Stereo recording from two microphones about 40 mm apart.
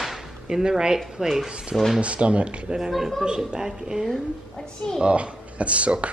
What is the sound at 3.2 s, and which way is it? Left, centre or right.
Speech, right.